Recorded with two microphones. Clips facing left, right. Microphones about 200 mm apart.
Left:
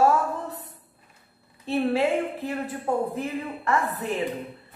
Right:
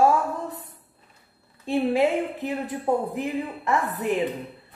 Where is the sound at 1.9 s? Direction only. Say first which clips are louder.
Right 2 dB; 15° right (ahead or behind).